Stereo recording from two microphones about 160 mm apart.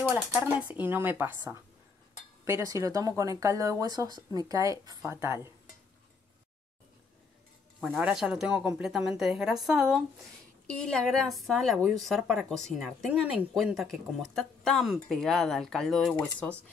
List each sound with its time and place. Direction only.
0.1 s speech: 10° right (ahead or behind)
7.8 s a woman's voice: 5° right (ahead or behind)